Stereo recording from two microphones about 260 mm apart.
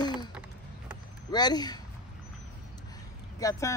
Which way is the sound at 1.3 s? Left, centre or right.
Centre.